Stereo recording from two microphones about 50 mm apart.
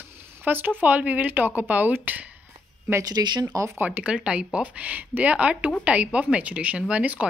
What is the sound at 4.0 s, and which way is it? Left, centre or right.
Speech, centre.